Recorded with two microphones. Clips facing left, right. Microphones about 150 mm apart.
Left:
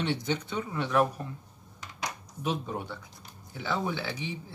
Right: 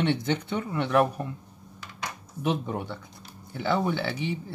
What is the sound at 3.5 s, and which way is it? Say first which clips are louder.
Speech: right 5 dB; 60° right (ahead or behind).